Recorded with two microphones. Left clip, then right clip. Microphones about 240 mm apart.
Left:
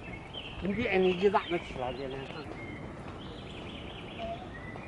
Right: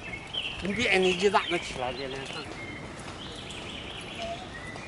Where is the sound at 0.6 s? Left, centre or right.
Centre.